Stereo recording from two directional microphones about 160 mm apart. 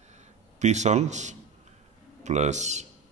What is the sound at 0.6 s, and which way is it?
A man's voice, 45° right (ahead or behind).